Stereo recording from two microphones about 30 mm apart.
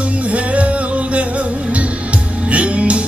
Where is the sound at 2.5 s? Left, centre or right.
Right.